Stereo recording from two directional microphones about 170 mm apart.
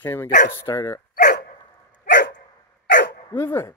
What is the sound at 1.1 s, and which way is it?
Dog, 55° left (ahead or behind).